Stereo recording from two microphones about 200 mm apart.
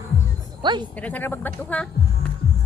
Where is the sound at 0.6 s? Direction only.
25° right (ahead or behind).